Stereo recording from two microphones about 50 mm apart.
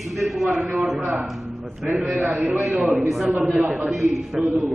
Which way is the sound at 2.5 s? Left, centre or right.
Centre.